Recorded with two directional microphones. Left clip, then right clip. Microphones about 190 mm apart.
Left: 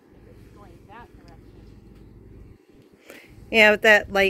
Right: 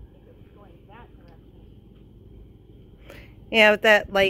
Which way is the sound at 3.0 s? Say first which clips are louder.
Left 1 dB; centre (ahead or behind).